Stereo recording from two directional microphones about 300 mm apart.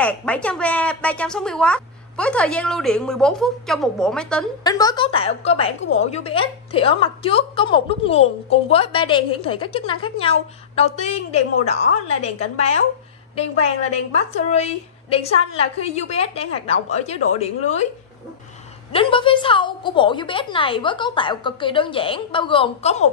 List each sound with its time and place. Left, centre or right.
0.0 s a woman's voice: centre; by 17.5 s left
18.9 s a woman's voice: centre